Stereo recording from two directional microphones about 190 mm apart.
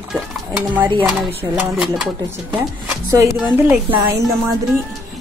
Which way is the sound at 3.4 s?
5° right (ahead or behind).